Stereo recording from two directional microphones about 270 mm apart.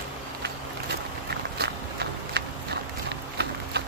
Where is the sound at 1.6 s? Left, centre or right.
Right.